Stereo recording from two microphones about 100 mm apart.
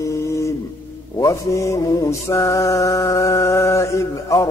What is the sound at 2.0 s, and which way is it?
Mantra, 30° left (ahead or behind).